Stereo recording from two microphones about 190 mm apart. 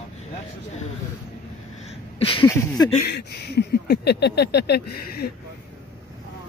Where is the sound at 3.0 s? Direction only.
60° left (ahead or behind).